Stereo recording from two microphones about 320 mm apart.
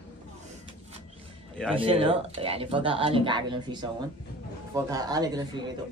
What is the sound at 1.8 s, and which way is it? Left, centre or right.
Speech, centre.